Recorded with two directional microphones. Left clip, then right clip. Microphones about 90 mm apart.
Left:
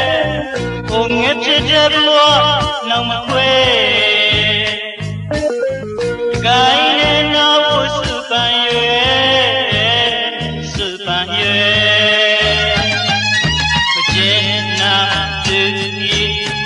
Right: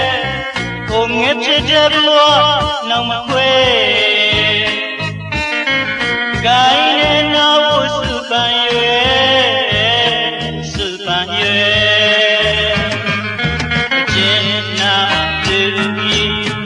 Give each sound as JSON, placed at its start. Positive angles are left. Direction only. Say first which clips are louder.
{"t": 0.9, "sound": "music", "louder": "right 1 dB", "side_deg": -35}
{"t": 6.4, "sound": "music", "louder": "even", "side_deg": -35}
{"t": 11.1, "sound": "music", "louder": "even", "side_deg": -40}
{"t": 14.1, "sound": "music", "louder": "even", "side_deg": -40}